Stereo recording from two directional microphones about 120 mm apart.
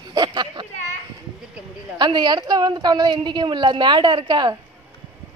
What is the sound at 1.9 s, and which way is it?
A woman's voice, 40° right (ahead or behind).